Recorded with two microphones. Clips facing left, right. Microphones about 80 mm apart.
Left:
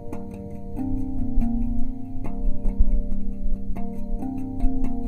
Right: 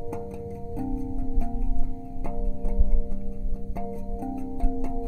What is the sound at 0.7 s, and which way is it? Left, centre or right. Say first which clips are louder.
Music: left 4 dB; centre.